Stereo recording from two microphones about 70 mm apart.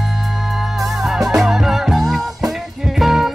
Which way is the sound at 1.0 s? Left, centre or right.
Centre.